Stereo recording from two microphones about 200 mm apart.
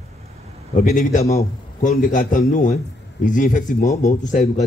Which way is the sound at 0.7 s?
40° left (ahead or behind).